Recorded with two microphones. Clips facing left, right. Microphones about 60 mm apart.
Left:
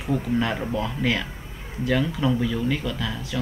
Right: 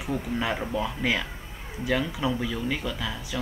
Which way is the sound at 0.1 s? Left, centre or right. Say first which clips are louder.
Left 4 dB; centre.